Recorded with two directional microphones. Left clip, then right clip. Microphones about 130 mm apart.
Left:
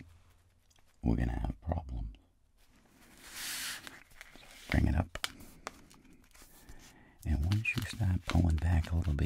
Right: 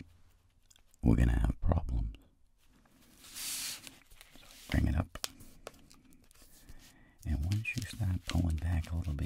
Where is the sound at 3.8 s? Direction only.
15° right (ahead or behind).